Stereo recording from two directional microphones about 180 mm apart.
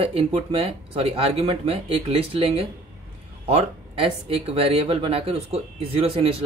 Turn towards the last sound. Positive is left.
turn(degrees=-35)  # may be behind; listen again after turning